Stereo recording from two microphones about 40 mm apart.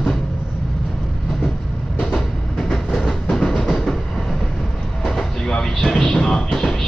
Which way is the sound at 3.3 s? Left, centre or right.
Centre.